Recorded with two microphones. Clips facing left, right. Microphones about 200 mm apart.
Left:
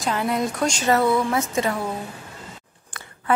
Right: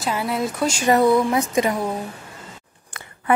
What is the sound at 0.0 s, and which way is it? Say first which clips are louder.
A woman's voice: even; 5° right (ahead or behind).